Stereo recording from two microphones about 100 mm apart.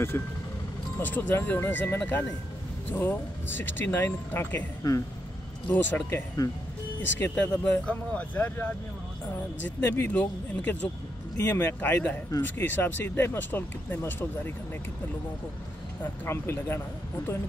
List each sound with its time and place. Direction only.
0.1 s speech: 25° left (ahead or behind)
5.7 s speech: 20° left (ahead or behind)
7.6 s speech: 15° left (ahead or behind)
11.3 s speech: 35° left (ahead or behind)
11.6 s speech: 20° left (ahead or behind)
16.0 s speech: 25° left (ahead or behind)